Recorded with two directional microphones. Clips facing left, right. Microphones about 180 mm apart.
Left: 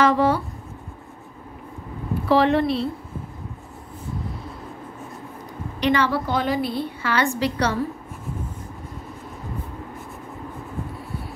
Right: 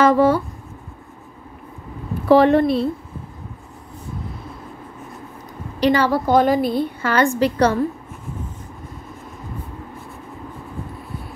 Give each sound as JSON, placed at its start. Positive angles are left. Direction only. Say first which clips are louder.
{"t": 0.0, "sound": "a sound", "louder": "right 4 dB", "side_deg": -45}
{"t": 2.2, "sound": "a woman's voice", "louder": "right 5 dB", "side_deg": -45}
{"t": 5.8, "sound": "a woman's voice", "louder": "right 4 dB", "side_deg": -40}